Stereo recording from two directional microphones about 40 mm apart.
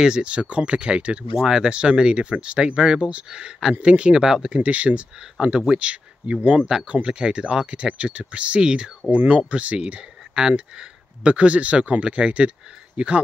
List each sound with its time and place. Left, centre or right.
0.0 s speech: right
1.4 s speech: centre
4.2 s speech: centre
4.6 s speech: right
9.1 s speech: right
9.5 s speech: right